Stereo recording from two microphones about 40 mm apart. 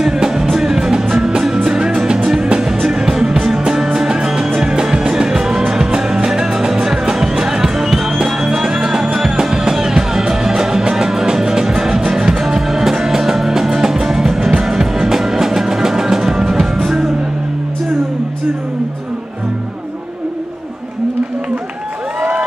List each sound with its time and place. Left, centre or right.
0.0 s music: centre